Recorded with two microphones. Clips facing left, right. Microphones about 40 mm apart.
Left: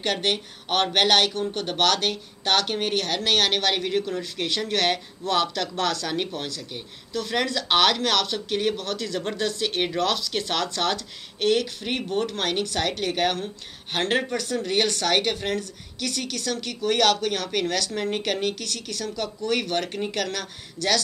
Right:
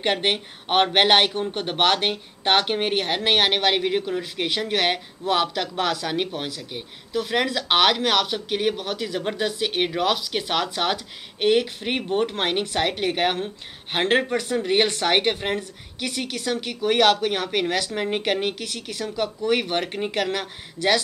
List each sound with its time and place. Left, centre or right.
0.0 s speech: right